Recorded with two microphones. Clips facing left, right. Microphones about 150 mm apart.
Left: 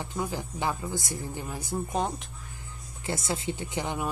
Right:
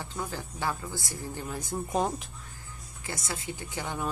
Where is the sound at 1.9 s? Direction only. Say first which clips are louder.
Right 3 dB; centre (ahead or behind).